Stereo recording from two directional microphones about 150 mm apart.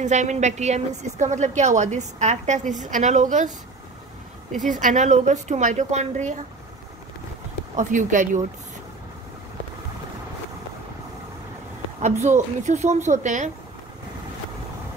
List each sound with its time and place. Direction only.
0.0 s a woman's voice: 50° right (ahead or behind)
4.6 s a woman's voice: 55° right (ahead or behind)
7.7 s speech: 60° right (ahead or behind)
12.0 s a woman's voice: 50° right (ahead or behind)